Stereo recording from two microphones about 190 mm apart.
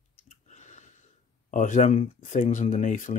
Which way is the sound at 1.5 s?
40° left (ahead or behind).